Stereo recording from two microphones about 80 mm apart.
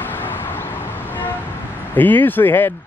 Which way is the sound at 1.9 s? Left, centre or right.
Left.